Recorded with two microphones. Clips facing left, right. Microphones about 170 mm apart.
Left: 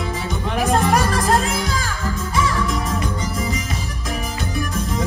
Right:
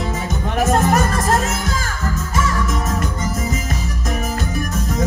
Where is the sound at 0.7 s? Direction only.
45° right (ahead or behind).